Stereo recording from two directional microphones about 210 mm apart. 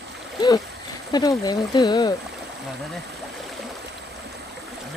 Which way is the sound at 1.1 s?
20° left (ahead or behind).